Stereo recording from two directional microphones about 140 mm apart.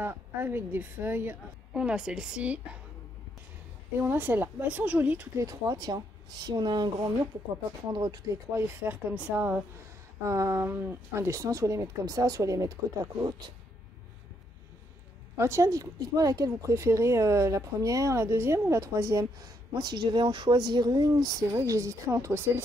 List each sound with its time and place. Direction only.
0.0 s a woman's voice: 15° right (ahead or behind)
4.0 s a woman's voice: 15° right (ahead or behind)
5.4 s speech: 25° right (ahead or behind)
7.9 s speech: 30° right (ahead or behind)
8.5 s a woman's voice: 10° right (ahead or behind)
15.3 s speech: 20° right (ahead or behind)
20.0 s speech: 35° right (ahead or behind)